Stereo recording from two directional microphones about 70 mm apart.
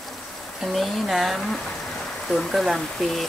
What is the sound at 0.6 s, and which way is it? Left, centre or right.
Speech, centre.